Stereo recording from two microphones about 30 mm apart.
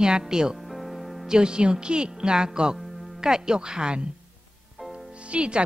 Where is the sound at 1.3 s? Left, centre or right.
Right.